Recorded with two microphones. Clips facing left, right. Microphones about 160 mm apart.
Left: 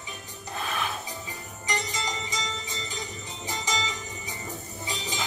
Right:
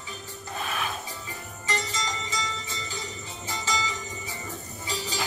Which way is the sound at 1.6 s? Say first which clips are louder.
Even; 15° left (ahead or behind).